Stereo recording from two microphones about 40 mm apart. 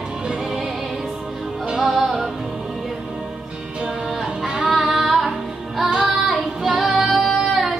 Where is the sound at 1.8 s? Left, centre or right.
Centre.